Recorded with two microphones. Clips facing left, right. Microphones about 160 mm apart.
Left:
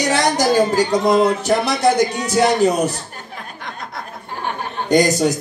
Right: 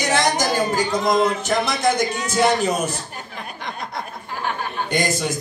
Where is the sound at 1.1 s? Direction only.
35° left (ahead or behind).